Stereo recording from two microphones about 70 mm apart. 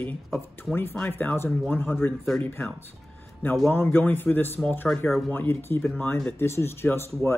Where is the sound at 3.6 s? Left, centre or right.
Left.